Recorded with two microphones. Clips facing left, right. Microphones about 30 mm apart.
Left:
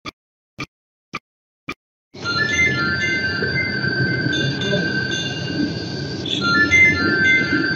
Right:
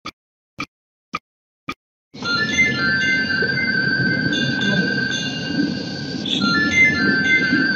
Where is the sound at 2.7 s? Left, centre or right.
Right.